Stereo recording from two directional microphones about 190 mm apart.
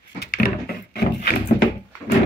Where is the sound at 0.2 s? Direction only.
50° left (ahead or behind).